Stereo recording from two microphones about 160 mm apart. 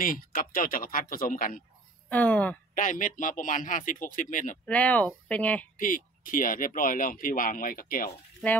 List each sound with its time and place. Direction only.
0.0 s speech: 60° left (ahead or behind)
2.0 s speech: 10° left (ahead or behind)
2.7 s speech: 55° left (ahead or behind)
4.6 s speech: 10° left (ahead or behind)
5.8 s speech: 60° left (ahead or behind)